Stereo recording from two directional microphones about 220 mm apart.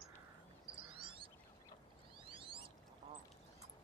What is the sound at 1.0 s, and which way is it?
Bird, 25° right (ahead or behind).